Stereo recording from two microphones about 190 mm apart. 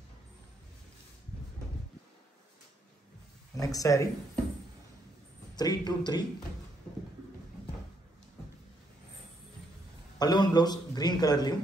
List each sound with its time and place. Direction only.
3.5 s speech: 20° left (ahead or behind)
5.6 s a man's voice: 20° left (ahead or behind)
10.1 s a man's voice: 20° left (ahead or behind)